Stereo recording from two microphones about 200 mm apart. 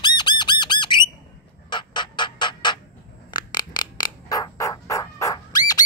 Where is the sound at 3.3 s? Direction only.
20° left (ahead or behind).